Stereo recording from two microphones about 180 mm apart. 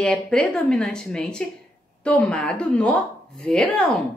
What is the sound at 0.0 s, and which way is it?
A woman's voice, 5° left (ahead or behind).